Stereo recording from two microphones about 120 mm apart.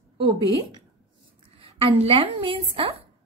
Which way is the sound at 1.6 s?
50° right (ahead or behind).